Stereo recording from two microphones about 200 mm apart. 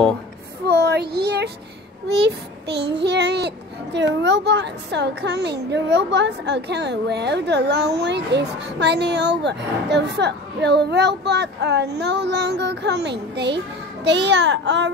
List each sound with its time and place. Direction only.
0.7 s child singing: 55° right (ahead or behind)
2.2 s a child's voice: 60° right (ahead or behind)